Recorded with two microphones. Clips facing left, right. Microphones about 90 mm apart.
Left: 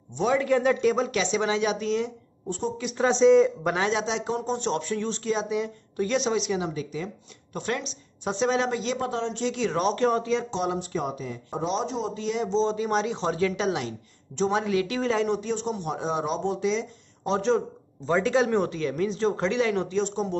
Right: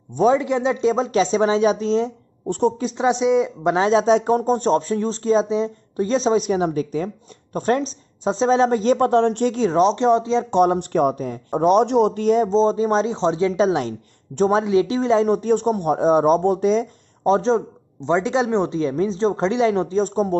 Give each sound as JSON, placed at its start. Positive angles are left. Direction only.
{"t": 0.4, "sound": "speech", "side_deg": -20}
{"t": 2.4, "sound": "a woman's voice", "side_deg": -60}
{"t": 3.0, "sound": "speech", "side_deg": -15}
{"t": 3.7, "sound": "speech", "side_deg": -30}
{"t": 4.0, "sound": "speech", "side_deg": -45}
{"t": 8.9, "sound": "speech", "side_deg": -55}
{"t": 9.8, "sound": "speech", "side_deg": -25}
{"t": 10.5, "sound": "speech", "side_deg": -55}
{"t": 14.6, "sound": "speech", "side_deg": -25}